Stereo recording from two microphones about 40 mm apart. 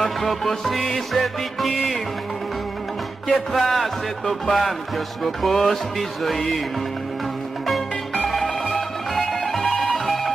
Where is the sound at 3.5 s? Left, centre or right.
Centre.